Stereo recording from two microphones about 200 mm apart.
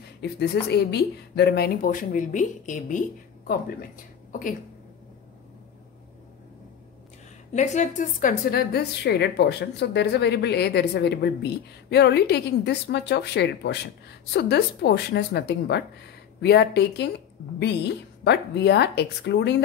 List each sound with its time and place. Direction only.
0.2 s speech: 55° left (ahead or behind); by 3.0 s 40° left (ahead or behind)
4.3 s speech: 40° left (ahead or behind)
7.5 s a woman's voice: 35° left (ahead or behind); by 19.6 s 60° left (ahead or behind)